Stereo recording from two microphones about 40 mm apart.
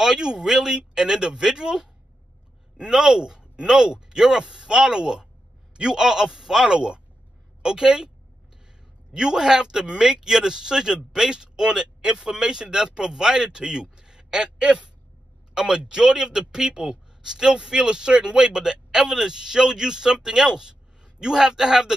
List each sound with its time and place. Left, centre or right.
0.0 s speech: centre
9.1 s speech: centre
13.9 s a sound: centre
15.5 s speech: centre